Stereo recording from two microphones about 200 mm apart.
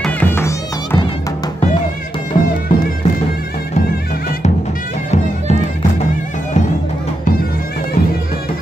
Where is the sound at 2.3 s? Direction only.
25° left (ahead or behind).